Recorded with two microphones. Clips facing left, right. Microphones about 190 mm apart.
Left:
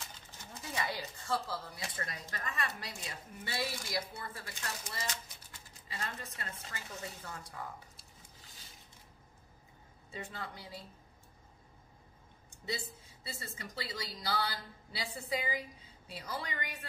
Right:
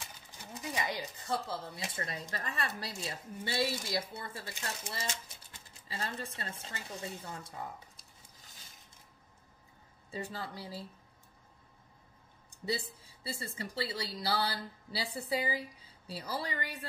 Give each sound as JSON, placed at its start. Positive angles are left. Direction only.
{"t": 0.6, "sound": "speech", "side_deg": -15}
{"t": 10.1, "sound": "speech", "side_deg": -35}
{"t": 12.6, "sound": "speech", "side_deg": -35}